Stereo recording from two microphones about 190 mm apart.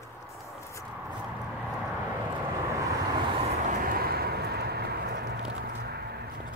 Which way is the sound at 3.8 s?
50° right (ahead or behind).